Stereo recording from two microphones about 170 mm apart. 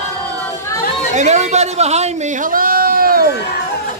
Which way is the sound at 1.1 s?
45° right (ahead or behind).